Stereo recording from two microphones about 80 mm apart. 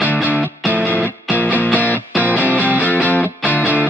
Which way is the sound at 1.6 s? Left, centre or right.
Centre.